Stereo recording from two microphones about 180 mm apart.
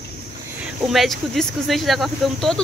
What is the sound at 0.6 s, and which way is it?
Speech, centre (ahead or behind).